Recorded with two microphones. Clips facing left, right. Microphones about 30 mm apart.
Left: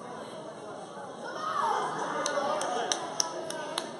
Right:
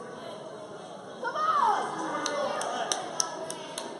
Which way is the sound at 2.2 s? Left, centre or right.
Centre.